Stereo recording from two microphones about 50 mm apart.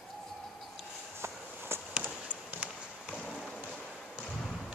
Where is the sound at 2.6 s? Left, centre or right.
Right.